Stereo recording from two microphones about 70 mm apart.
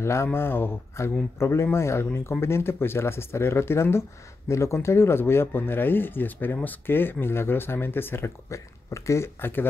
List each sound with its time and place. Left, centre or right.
0.0 s speech: left
1.0 s speech: left
8.5 s speech: left